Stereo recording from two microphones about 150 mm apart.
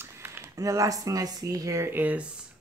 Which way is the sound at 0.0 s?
15° right (ahead or behind).